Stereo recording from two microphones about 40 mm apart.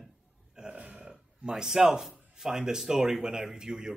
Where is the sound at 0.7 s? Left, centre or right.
Right.